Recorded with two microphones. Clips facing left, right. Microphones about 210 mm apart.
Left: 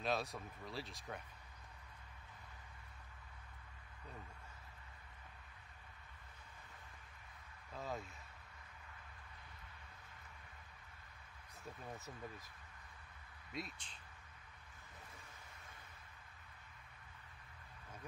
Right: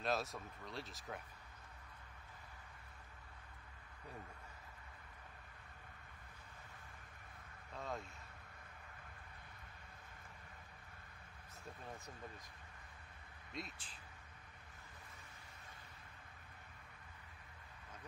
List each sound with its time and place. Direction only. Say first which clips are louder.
0.0 s speech: even; centre (ahead or behind)
7.7 s speech: left 1 dB; centre (ahead or behind)
13.5 s speech: left 2 dB; centre (ahead or behind)